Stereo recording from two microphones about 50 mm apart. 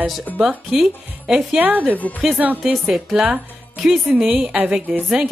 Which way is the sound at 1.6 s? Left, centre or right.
Right.